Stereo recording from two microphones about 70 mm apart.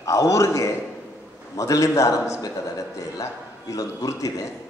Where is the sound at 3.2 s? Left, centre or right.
Left.